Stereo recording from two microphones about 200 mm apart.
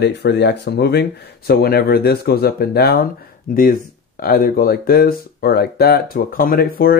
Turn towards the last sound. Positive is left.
turn(degrees=50)  # may be behind; listen again after turning